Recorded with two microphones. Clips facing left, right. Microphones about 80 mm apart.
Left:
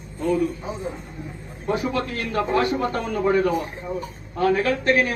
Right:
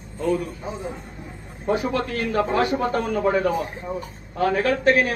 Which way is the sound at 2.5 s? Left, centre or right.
Right.